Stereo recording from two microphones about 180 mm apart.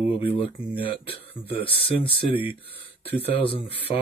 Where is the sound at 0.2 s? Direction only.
30° left (ahead or behind).